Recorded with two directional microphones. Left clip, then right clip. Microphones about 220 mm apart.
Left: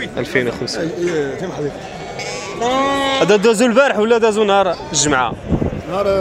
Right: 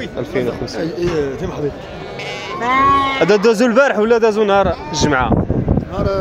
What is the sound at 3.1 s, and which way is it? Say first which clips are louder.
Speech: even; 10° right (ahead or behind).